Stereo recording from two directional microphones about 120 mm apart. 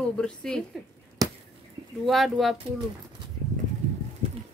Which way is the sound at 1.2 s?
30° right (ahead or behind).